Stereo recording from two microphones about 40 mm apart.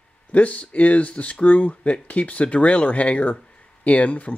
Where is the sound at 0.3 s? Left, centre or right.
Left.